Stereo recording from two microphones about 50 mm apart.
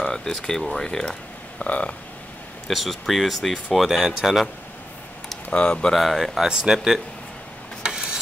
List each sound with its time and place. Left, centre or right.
0.0 s speech: centre; by 2.0 s left
2.7 s speech: centre
5.5 s speech: left
5.9 s speech: centre
6.4 s speech: centre
7.8 s a sound: centre